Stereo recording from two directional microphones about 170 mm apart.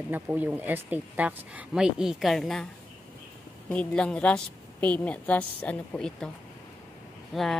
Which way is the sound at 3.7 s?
5° left (ahead or behind).